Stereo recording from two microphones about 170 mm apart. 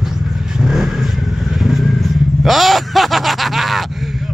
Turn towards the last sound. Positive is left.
turn(degrees=0)  # may be behind; listen again after turning